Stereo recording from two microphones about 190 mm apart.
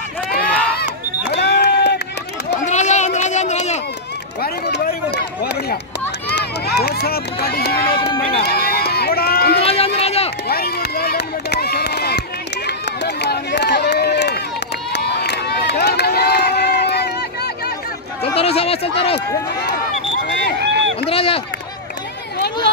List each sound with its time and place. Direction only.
1.3 s a sound: 60° left (ahead or behind)
2.6 s run: 40° left (ahead or behind)
4.4 s run: 60° left (ahead or behind)
9.6 s run: 30° left (ahead or behind)
10.5 s run: 55° left (ahead or behind)
18.2 s speech: 30° left (ahead or behind)
20.5 s run: 65° right (ahead or behind)
21.1 s run: 30° left (ahead or behind)